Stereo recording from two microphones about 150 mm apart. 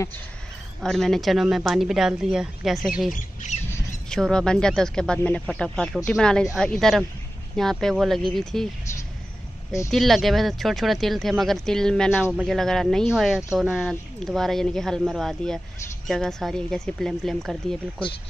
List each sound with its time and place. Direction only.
0.7 s speech: centre (ahead or behind)
3.1 s speech: 60° left (ahead or behind)
4.1 s speech: 5° left (ahead or behind)
9.8 s speech: centre (ahead or behind)